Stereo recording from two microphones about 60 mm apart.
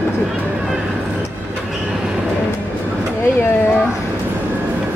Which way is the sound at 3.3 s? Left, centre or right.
Left.